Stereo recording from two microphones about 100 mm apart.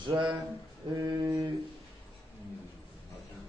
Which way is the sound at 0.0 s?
50° right (ahead or behind).